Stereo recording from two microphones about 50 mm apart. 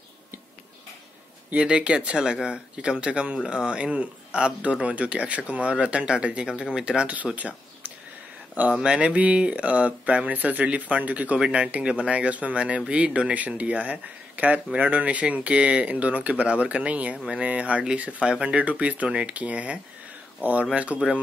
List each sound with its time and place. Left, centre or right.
1.5 s speech: right
7.3 s a sound: right
8.8 s speech: right
11.3 s speech: centre